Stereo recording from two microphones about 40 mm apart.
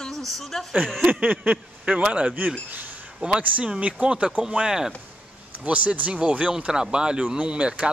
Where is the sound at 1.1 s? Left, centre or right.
Right.